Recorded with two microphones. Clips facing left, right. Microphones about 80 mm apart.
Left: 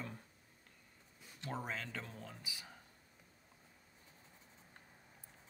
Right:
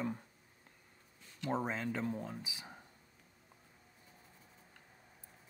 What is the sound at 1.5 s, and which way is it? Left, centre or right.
Speech, right.